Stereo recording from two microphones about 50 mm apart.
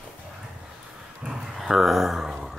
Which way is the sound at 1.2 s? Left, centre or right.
Centre.